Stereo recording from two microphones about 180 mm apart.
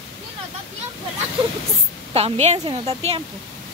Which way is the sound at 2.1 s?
35° right (ahead or behind).